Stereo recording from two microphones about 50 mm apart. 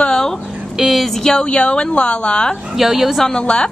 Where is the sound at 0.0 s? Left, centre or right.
Centre.